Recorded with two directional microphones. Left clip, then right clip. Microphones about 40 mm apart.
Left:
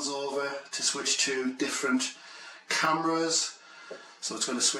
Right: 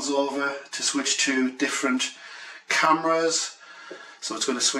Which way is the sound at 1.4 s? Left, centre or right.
Right.